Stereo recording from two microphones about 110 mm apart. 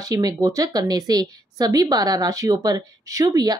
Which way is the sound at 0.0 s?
35° right (ahead or behind).